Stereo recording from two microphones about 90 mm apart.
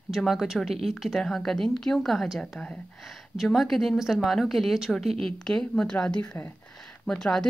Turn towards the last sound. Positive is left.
turn(degrees=5)  # may be behind; listen again after turning